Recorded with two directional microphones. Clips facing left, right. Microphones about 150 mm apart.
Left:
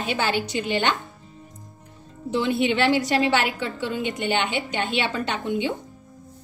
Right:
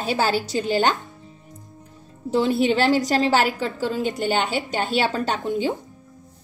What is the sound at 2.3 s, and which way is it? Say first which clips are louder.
A woman's voice: right 3 dB; 40° right (ahead or behind).